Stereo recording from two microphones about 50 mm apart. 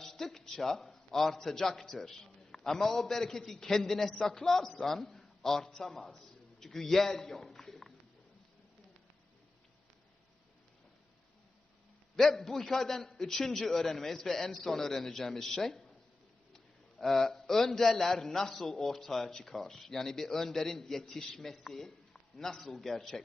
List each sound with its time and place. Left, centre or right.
0.0 s a sound: centre
0.9 s a man's voice: centre
12.2 s speech: centre